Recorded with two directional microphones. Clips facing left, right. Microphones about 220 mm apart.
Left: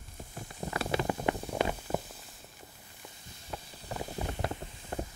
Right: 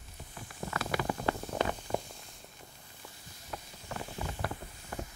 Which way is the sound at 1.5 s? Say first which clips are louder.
Left 1 dB; 10° left (ahead or behind).